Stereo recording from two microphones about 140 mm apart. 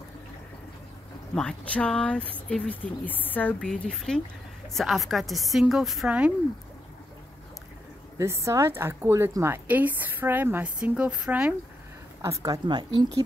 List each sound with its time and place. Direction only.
1.3 s a woman's voice: 5° left (ahead or behind)
8.2 s a woman's voice: 20° right (ahead or behind)
12.2 s a woman's voice: 25° right (ahead or behind)